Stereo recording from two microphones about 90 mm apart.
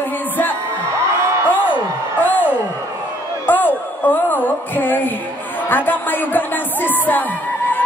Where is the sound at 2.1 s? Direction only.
20° left (ahead or behind).